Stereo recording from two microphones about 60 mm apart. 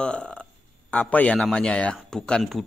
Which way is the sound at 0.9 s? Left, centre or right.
Left.